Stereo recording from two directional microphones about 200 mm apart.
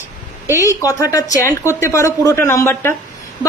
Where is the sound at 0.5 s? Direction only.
15° left (ahead or behind).